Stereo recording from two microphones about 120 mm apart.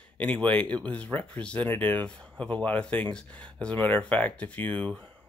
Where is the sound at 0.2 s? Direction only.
10° left (ahead or behind).